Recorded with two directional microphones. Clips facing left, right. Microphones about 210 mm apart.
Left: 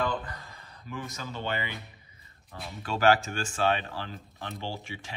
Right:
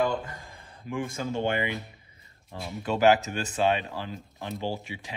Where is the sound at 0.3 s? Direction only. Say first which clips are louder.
Right 1 dB; 45° right (ahead or behind).